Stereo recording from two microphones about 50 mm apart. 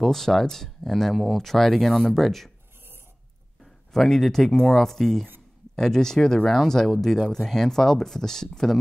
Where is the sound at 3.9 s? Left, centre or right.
Centre.